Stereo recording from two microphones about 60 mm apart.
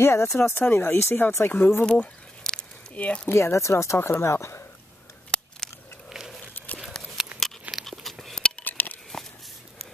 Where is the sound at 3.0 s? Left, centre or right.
Left.